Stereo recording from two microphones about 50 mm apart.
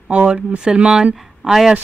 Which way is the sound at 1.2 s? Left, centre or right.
Centre.